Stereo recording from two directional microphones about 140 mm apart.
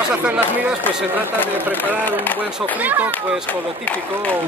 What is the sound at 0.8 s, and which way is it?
Speech, 15° left (ahead or behind).